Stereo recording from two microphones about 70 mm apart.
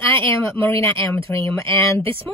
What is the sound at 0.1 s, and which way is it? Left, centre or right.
Speech, left.